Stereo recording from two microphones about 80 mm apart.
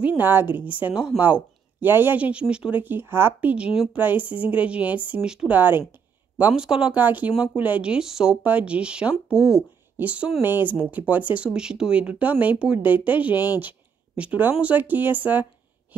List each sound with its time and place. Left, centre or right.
0.0 s speech: right
2.8 s speech: right
6.3 s speech: centre
7.0 s speech: right
8.4 s speech: centre
9.9 s speech: centre
13.6 s a sound: centre
14.6 s speech: centre